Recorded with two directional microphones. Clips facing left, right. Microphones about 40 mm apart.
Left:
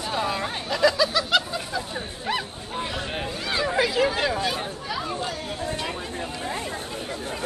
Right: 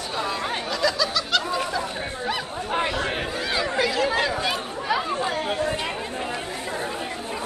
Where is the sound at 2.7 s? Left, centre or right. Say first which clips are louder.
Right 6 dB; right.